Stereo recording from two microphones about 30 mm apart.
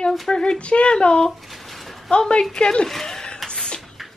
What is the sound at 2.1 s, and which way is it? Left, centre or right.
Speech, left.